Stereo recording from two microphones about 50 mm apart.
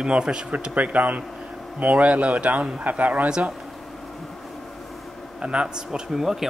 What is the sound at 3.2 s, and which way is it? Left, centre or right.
Speech, centre.